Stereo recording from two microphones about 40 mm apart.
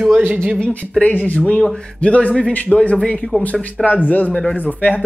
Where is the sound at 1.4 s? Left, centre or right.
Left.